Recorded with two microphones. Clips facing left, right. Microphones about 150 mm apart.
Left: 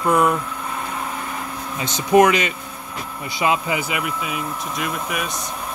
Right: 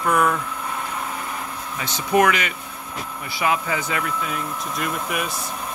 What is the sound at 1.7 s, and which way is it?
Speech, 20° left (ahead or behind).